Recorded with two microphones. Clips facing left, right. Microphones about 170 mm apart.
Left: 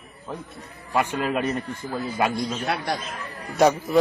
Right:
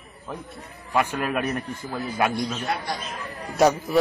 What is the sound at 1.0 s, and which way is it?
Speech, 10° right (ahead or behind).